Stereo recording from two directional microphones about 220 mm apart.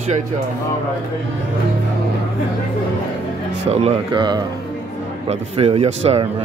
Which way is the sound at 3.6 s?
25° right (ahead or behind).